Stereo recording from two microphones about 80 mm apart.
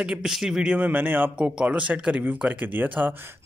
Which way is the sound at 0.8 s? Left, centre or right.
Right.